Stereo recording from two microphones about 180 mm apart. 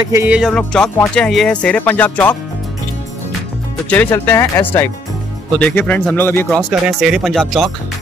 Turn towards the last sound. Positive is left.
turn(degrees=0)  # may be behind; listen again after turning